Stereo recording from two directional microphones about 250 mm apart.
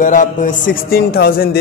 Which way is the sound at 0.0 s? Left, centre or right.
Left.